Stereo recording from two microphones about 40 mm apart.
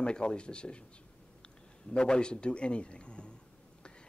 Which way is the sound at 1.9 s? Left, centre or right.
Left.